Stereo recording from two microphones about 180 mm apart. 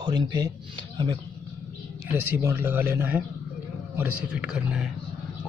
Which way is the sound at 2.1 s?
10° right (ahead or behind).